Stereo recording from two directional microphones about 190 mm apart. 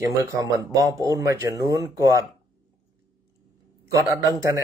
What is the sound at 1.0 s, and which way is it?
Speech, 15° right (ahead or behind).